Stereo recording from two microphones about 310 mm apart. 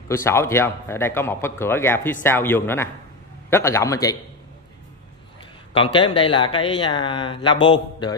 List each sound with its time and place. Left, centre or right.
0.1 s speech: centre
5.8 s speech: centre